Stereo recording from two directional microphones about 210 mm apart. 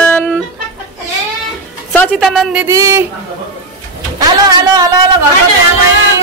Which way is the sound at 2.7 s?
15° right (ahead or behind).